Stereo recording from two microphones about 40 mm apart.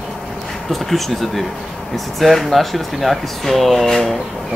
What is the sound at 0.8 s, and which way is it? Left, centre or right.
Speech, centre.